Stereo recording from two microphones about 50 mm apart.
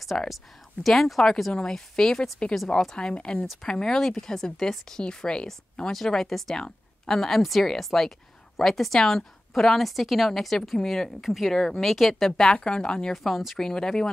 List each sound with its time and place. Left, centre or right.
0.1 s speech: centre
0.8 s a woman's voice: centre
1.5 s a woman's voice: centre
12.3 s speech: centre
13.1 s a woman's voice: centre